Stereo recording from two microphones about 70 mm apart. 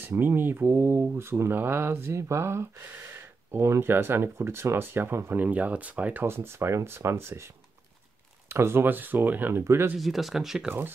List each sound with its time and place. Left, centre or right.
0.1 s speech: right
6.2 s speech: right
9.9 s speech: centre